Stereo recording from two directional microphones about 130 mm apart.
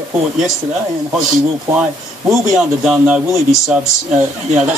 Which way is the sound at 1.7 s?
5° right (ahead or behind).